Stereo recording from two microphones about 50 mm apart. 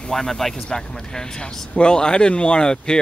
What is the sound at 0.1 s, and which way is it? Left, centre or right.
Speech, centre.